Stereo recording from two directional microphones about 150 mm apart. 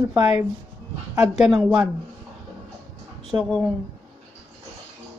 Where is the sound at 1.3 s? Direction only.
5° right (ahead or behind).